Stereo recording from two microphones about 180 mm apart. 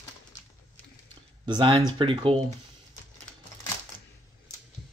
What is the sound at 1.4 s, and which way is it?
Speech, 25° right (ahead or behind).